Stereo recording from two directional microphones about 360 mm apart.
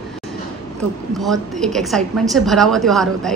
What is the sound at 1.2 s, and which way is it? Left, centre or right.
A woman's voice, centre.